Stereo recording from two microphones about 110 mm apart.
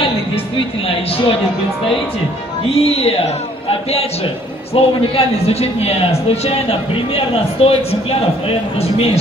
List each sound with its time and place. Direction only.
0.8 s speech: 60° left (ahead or behind)
2.7 s speech: 65° left (ahead or behind)
4.7 s a man's voice: 65° left (ahead or behind)